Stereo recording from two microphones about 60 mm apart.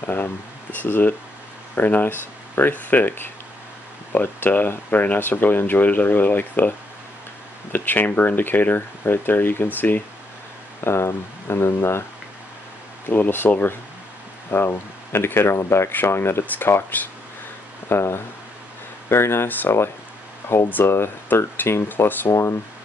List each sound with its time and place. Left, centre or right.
0.0 s speech: left
7.7 s speech: left
10.8 s speech: left
13.1 s speech: left
17.8 s speech: left
20.7 s speech: left
22.3 s speech: left